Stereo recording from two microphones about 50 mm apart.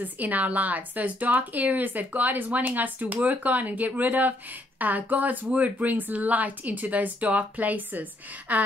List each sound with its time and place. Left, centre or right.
0.0 s speech: right